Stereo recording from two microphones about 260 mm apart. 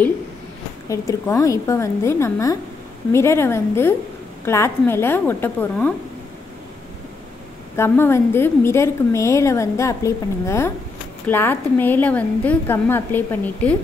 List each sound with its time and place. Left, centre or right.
0.8 s a woman's voice: centre
7.7 s a woman's voice: centre